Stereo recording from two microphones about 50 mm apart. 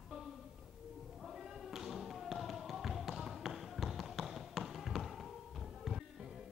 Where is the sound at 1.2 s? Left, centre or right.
Centre.